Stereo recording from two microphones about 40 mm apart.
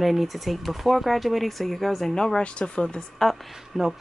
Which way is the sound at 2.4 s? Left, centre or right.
Left.